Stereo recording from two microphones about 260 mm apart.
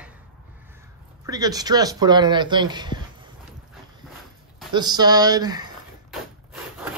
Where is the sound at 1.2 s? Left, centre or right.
Centre.